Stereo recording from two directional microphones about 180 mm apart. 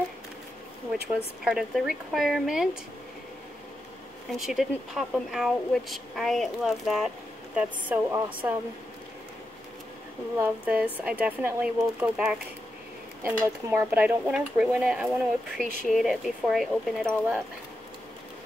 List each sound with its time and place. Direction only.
1.0 s speech: 5° right (ahead or behind)
4.3 s speech: centre (ahead or behind)
10.4 s speech: 5° right (ahead or behind)
15.6 s speech: 45° left (ahead or behind)
15.9 s speech: centre (ahead or behind)